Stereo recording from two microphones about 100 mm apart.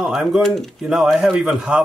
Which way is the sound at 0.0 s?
5° right (ahead or behind).